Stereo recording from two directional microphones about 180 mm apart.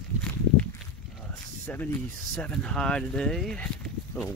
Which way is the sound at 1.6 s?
10° left (ahead or behind).